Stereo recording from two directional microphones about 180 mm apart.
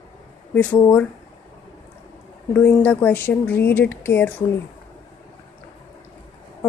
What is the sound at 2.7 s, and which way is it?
Speech, 10° left (ahead or behind).